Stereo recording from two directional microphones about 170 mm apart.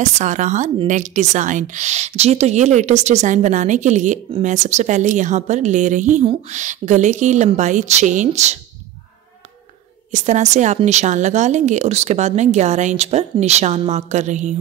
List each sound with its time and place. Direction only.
0.0 s speech: 45° right (ahead or behind)
10.1 s speech: 45° right (ahead or behind)